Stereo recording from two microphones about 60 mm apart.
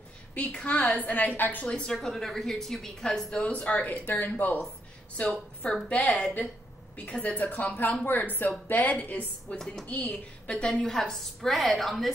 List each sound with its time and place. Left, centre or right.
0.3 s speech: left
1.7 s a woman's voice: centre
3.7 s speech: left
4.0 s a woman's voice: left; by 12.1 s centre